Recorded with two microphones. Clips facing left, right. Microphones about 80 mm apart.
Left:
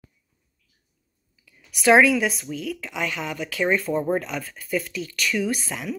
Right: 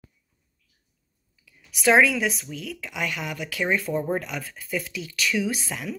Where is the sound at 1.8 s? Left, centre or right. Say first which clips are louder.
Left 3 dB; centre.